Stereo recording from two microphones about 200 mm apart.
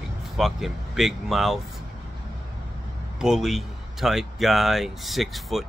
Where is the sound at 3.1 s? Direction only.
5° right (ahead or behind).